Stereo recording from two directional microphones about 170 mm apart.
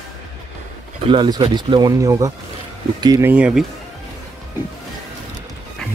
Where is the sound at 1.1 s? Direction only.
25° right (ahead or behind).